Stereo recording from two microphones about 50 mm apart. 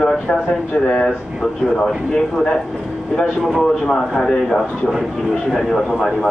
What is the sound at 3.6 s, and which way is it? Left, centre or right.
Speech, centre.